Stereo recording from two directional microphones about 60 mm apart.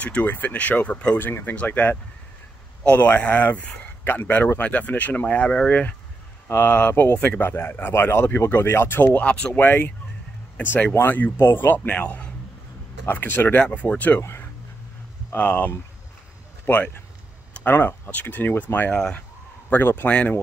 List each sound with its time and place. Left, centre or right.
0.0 s speech: left
1.2 s speech: left
7.2 s speech: left
7.4 s speech: left
9.2 s speech: centre
9.5 s speech: left
13.0 s speech: left
14.2 s speech: left
15.3 s speech: left
18.9 s speech: centre
19.7 s speech: left
20.1 s speech: left